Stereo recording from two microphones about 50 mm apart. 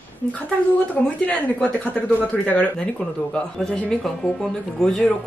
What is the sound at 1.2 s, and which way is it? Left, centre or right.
Speech, left.